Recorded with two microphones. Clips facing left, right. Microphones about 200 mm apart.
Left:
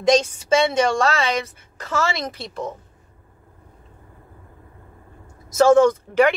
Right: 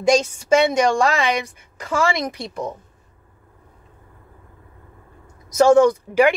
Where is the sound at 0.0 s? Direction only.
10° right (ahead or behind).